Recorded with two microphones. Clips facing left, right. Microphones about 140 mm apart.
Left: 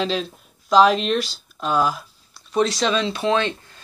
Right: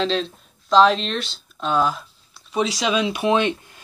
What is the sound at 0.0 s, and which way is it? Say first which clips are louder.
Speech: right 1 dB; 5° left (ahead or behind).